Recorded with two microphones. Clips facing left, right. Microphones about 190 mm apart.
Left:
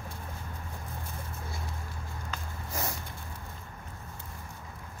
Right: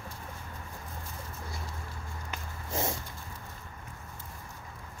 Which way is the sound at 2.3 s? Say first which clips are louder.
Right 3 dB; 25° right (ahead or behind).